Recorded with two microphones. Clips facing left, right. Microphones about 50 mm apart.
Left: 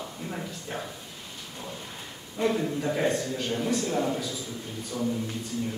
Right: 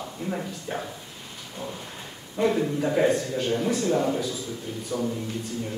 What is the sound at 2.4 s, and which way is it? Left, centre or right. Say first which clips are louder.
Speech: right 3 dB; centre.